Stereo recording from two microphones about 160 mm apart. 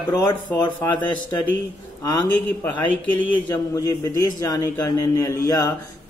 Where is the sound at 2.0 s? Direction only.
10° left (ahead or behind).